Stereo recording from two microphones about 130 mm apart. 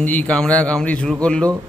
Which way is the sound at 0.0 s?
10° left (ahead or behind).